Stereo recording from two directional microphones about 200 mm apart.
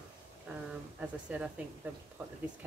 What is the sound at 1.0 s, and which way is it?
Speech, 5° right (ahead or behind).